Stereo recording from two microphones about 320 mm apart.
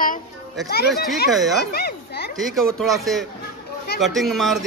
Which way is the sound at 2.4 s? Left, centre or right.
Centre.